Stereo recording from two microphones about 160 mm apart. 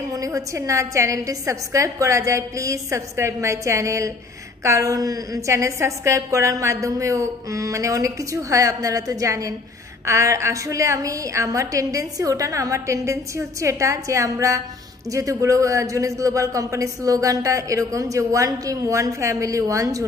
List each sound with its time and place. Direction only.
0.1 s a man's voice: 20° right (ahead or behind)